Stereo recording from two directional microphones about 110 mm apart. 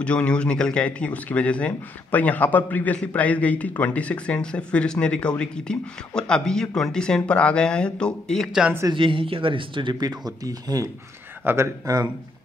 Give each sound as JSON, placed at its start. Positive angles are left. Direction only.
{"t": 0.0, "sound": "speech", "side_deg": 10}
{"t": 8.9, "sound": "speech", "side_deg": -50}